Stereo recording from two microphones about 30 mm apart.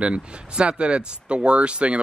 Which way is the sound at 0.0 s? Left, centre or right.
Right.